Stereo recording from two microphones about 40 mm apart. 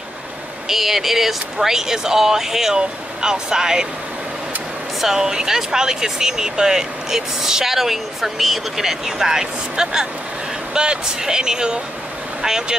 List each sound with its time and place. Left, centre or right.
0.7 s speech: centre
5.0 s speech: centre